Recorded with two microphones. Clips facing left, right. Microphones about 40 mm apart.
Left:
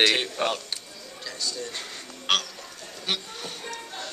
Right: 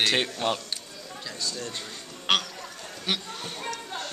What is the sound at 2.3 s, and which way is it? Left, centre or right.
Speech, centre.